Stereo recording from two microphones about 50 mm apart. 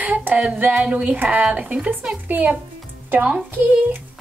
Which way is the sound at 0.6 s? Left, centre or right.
Right.